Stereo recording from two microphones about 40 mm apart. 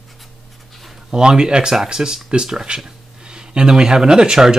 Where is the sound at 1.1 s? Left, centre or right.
Centre.